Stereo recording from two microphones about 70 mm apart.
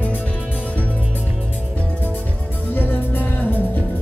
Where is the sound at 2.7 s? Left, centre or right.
Left.